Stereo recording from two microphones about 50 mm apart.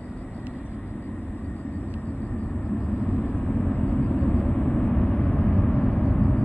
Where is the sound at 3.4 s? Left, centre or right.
Centre.